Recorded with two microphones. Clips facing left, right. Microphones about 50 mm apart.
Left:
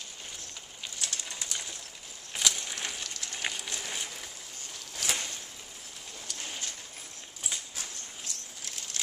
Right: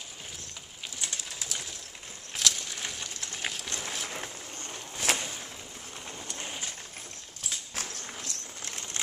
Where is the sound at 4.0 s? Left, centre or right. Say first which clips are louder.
Right 4 dB; right.